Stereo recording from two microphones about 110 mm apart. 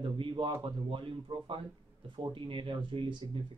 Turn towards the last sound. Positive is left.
turn(degrees=-50)  # may be behind; listen again after turning